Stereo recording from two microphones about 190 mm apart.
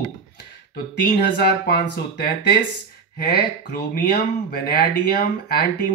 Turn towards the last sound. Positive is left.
turn(degrees=55)  # may be behind; listen again after turning